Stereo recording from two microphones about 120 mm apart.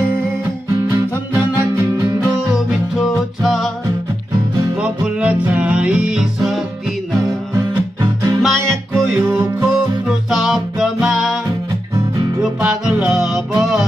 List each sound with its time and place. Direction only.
2.5 s music: centre (ahead or behind)
4.8 s music: 10° right (ahead or behind)
8.4 s music: centre (ahead or behind)
9.2 s music: 20° right (ahead or behind)
10.0 s music: centre (ahead or behind)
12.4 s music: 5° right (ahead or behind)